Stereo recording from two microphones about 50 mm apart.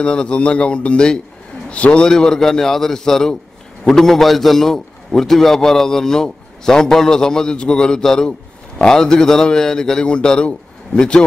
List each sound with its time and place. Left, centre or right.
0.0 s a man's voice: centre